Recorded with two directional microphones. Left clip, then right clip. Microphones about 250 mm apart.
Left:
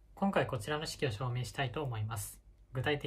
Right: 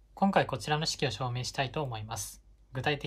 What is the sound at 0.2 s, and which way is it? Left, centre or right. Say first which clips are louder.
Speech: right 5 dB; centre.